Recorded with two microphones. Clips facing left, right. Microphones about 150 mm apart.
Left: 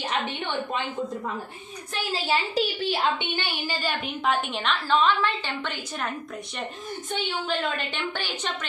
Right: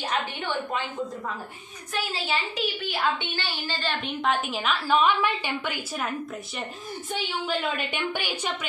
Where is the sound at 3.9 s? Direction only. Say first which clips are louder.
Right 1 dB; centre (ahead or behind).